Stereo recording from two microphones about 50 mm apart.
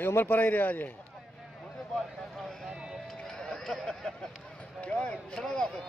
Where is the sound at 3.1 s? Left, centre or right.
Centre.